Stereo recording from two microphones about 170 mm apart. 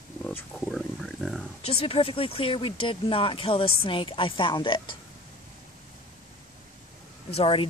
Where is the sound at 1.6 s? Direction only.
35° left (ahead or behind).